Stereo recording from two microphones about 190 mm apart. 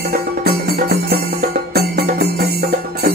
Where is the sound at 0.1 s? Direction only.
55° right (ahead or behind).